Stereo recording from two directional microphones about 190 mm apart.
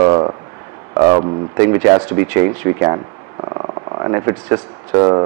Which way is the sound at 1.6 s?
15° right (ahead or behind).